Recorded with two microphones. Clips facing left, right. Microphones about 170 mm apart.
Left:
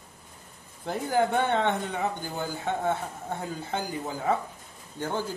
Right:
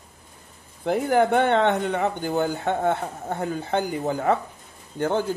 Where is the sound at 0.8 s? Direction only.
65° right (ahead or behind).